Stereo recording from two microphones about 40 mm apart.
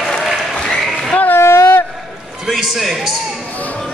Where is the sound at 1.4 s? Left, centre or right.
Left.